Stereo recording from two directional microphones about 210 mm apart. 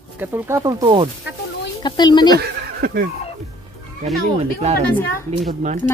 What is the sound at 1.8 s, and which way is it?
Speech, 20° left (ahead or behind).